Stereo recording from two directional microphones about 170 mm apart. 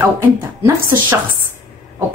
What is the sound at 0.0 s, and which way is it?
Speech, 15° right (ahead or behind).